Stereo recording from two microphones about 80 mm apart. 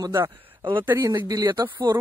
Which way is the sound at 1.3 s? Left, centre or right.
Right.